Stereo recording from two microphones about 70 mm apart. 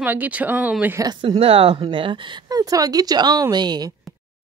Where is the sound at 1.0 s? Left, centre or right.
Right.